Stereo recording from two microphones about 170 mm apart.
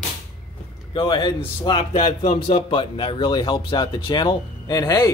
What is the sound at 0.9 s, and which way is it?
Speech, 25° left (ahead or behind).